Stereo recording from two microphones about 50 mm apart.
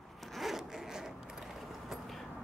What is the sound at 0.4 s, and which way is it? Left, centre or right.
Zipper, centre.